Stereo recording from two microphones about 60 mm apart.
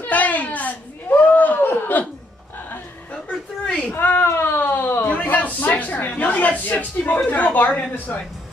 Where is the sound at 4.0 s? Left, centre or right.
Left.